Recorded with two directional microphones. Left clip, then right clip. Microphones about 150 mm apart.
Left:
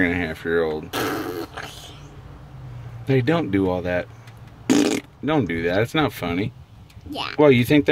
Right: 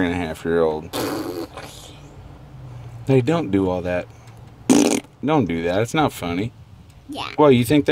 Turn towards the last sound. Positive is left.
turn(degrees=-25)  # may be behind; listen again after turning